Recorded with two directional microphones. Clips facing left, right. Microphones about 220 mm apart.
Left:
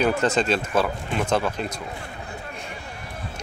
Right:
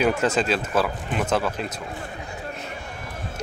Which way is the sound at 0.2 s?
5° right (ahead or behind).